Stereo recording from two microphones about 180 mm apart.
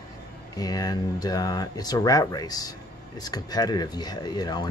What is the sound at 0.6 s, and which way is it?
Speech, 20° left (ahead or behind).